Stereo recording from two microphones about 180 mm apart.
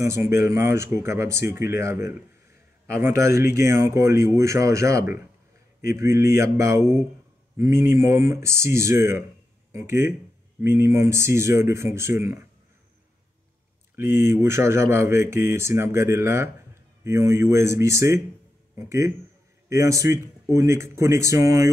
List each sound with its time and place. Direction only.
0.0 s speech: 15° right (ahead or behind)
13.9 s speech: 15° right (ahead or behind)